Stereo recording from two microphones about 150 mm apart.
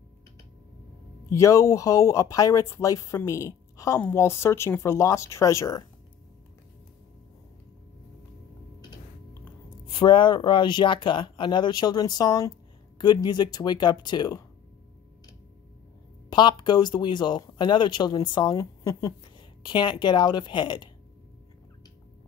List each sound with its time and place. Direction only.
1.3 s a woman's voice: 20° left (ahead or behind)
9.9 s speech: 30° left (ahead or behind)
16.3 s speech: 30° left (ahead or behind)